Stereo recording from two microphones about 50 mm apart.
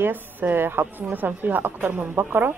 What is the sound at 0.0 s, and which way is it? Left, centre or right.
A woman's voice, right.